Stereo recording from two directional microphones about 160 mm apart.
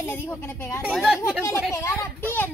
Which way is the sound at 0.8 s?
Centre (ahead or behind).